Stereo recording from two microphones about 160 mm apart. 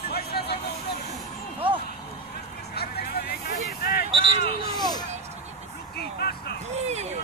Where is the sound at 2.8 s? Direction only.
75° left (ahead or behind).